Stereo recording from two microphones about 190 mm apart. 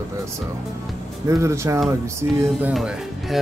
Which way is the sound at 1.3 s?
15° right (ahead or behind).